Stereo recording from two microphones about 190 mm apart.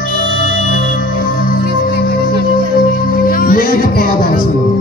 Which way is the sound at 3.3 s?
50° left (ahead or behind).